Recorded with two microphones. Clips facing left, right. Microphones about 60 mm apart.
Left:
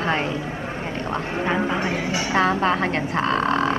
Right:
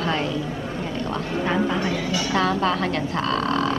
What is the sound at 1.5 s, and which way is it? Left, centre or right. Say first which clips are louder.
A woman's voice: even; left.